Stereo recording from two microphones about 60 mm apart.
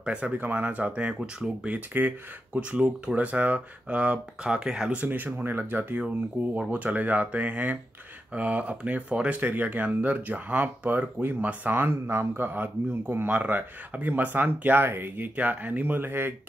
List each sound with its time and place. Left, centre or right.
0.0 s speech: right
2.0 s speech: right
2.6 s speech: centre
4.9 s speech: right
6.0 s speech: right